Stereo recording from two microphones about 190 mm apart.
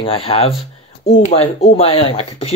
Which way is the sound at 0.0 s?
30° left (ahead or behind).